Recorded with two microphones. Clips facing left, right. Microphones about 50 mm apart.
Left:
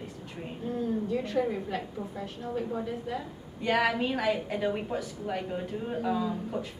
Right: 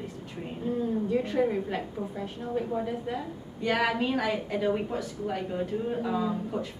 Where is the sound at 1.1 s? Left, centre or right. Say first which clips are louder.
Right 5 dB; right.